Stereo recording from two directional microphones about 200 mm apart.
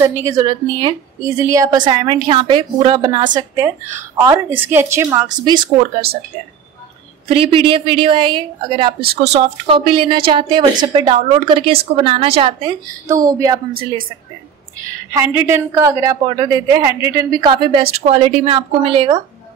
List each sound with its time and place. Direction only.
0.2 s a woman's voice: 20° right (ahead or behind)
7.2 s a woman's voice: 25° right (ahead or behind)
9.0 s speech: 50° right (ahead or behind)
9.3 s a woman's voice: 25° right (ahead or behind)
13.1 s a woman's voice: 15° right (ahead or behind)
15.1 s a woman's voice: 10° right (ahead or behind)